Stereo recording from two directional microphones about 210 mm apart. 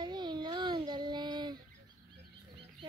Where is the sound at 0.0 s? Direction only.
20° right (ahead or behind).